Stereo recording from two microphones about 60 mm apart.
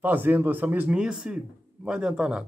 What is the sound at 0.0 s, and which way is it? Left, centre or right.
Speech, right.